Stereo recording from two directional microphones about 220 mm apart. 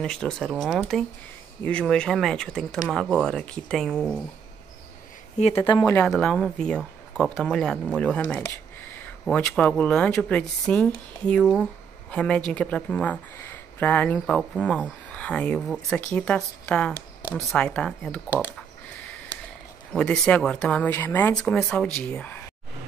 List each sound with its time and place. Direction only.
0.0 s speech: 5° left (ahead or behind)
5.6 s speech: 20° left (ahead or behind)
6.0 s speech: centre (ahead or behind)
19.9 s speech: 5° left (ahead or behind)